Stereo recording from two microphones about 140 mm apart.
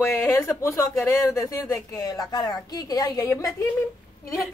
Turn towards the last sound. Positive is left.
turn(degrees=25)  # may be behind; listen again after turning